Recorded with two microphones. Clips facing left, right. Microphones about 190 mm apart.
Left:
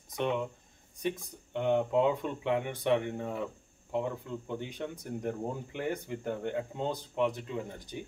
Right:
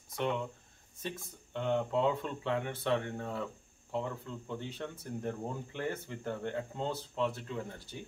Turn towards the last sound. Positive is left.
turn(degrees=15)  # may be behind; listen again after turning